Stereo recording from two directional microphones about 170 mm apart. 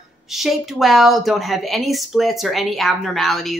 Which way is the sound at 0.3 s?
Centre (ahead or behind).